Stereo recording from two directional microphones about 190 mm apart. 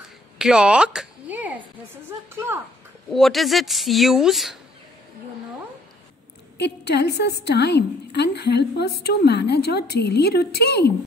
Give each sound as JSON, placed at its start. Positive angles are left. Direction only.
{"t": 0.4, "sound": "a woman's voice", "side_deg": -5}
{"t": 3.1, "sound": "speech", "side_deg": 0}
{"t": 6.6, "sound": "a woman's voice", "side_deg": 60}